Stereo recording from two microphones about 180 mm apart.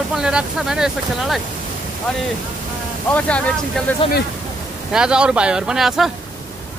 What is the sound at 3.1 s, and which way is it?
Speech, 5° left (ahead or behind).